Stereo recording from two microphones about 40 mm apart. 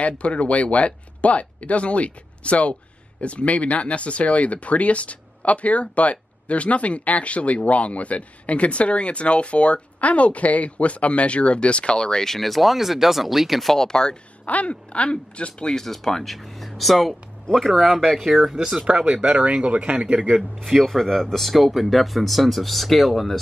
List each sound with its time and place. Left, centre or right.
0.0 s speech: left
12.3 s speech: centre
13.7 s speech: centre
14.4 s speech: left
15.7 s speech: centre
17.8 s speech: centre
18.8 s speech: right
20.3 s speech: centre